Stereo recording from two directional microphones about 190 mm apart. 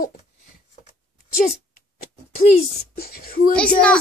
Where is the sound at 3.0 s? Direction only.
50° left (ahead or behind).